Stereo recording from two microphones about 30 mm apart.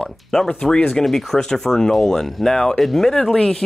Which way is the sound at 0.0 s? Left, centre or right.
Centre.